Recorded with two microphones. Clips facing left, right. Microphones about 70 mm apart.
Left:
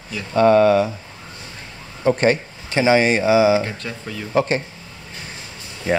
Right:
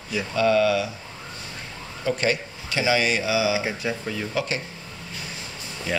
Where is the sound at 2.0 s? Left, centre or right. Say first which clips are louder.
Left 7 dB; left.